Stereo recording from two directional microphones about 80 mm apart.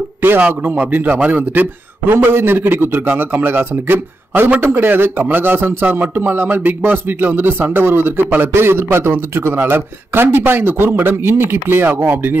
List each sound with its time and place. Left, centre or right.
0.2 s a man's voice: right